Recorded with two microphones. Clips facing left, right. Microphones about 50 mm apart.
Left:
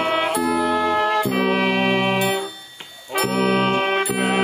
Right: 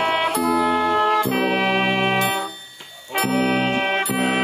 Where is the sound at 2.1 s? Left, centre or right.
Centre.